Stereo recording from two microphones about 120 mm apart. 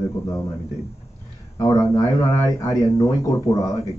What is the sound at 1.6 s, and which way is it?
Speech, 30° left (ahead or behind).